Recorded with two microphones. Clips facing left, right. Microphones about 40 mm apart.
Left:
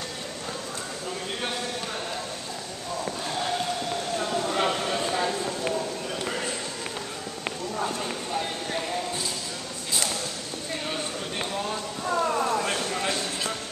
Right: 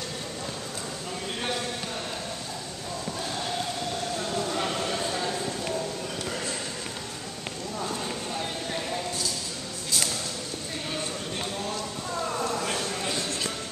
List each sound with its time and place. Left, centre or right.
4.2 s clip-clop: centre
6.2 s basketball bounce: left
7.8 s clip-clop: centre
10.9 s a sound: left